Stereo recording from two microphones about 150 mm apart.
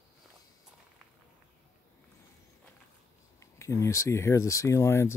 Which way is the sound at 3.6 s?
20° left (ahead or behind).